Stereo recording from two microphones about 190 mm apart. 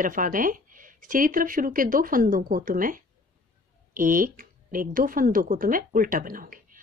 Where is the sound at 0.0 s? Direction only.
45° right (ahead or behind).